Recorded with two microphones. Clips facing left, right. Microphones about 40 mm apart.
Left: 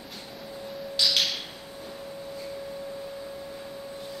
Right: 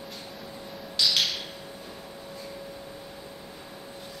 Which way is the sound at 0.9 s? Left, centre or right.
Centre.